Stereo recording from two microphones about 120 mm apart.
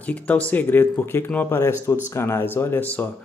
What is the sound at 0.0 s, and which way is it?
Speech, 10° left (ahead or behind).